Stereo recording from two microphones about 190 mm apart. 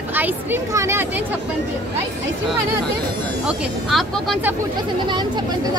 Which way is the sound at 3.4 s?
Centre (ahead or behind).